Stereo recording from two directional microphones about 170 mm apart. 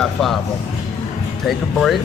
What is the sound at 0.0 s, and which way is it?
Speech, centre (ahead or behind).